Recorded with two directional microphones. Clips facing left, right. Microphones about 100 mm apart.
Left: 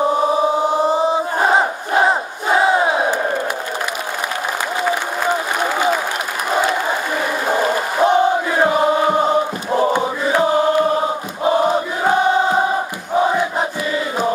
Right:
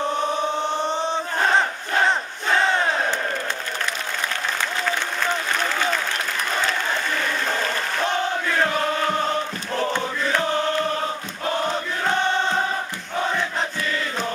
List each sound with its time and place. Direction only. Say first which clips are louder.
0.1 s chant: left 7 dB; 5° left (ahead or behind)
1.9 s crowd: left 5 dB; 15° left (ahead or behind)
4.8 s applause: left 7 dB; 15° left (ahead or behind)
6.5 s a sound: left 8 dB; 15° left (ahead or behind)